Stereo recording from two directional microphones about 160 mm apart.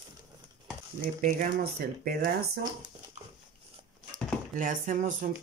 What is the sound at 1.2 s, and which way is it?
Speech, 65° right (ahead or behind).